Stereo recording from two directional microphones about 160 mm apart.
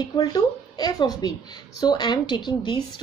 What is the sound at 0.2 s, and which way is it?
Speech, 25° left (ahead or behind).